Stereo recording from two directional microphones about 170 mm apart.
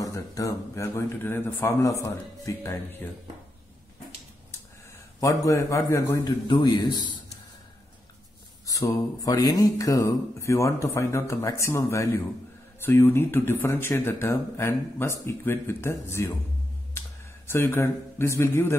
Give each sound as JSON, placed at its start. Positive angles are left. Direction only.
{"t": 0.0, "sound": "speech", "side_deg": 20}
{"t": 5.2, "sound": "a man's voice", "side_deg": 20}
{"t": 8.6, "sound": "speech", "side_deg": 20}
{"t": 17.5, "sound": "speech", "side_deg": 15}